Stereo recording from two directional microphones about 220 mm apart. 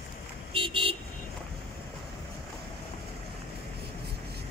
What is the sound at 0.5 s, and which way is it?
Vehicle, 25° right (ahead or behind).